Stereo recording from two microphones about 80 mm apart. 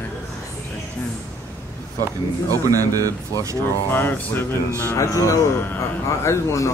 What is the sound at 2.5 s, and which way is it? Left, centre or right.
Speech, right.